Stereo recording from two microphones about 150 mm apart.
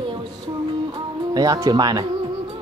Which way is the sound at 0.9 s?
25° right (ahead or behind).